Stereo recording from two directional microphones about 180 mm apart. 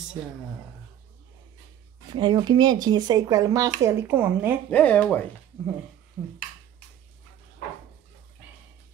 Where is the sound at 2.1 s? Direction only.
25° right (ahead or behind).